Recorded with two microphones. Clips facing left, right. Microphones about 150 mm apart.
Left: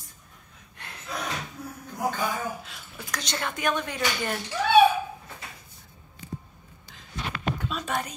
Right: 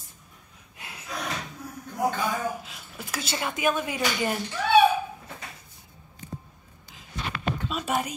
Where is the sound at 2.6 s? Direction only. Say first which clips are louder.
Right 1 dB; 5° right (ahead or behind).